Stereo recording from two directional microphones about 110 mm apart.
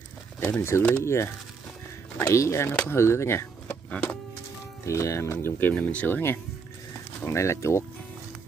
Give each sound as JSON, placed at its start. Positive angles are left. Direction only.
{"t": 0.4, "sound": "speech", "side_deg": 25}
{"t": 3.9, "sound": "music", "side_deg": 15}
{"t": 4.8, "sound": "speech", "side_deg": 25}